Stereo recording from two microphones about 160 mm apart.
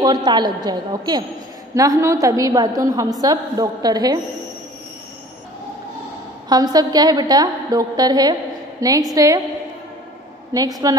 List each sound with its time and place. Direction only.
0.0 s a woman's voice: 25° right (ahead or behind)
6.5 s a woman's voice: 25° right (ahead or behind)
10.5 s a woman's voice: 25° right (ahead or behind)